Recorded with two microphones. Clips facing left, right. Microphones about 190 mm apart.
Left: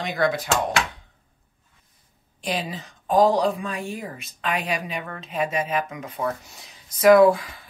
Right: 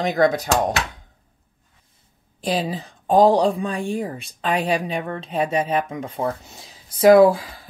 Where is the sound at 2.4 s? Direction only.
30° right (ahead or behind).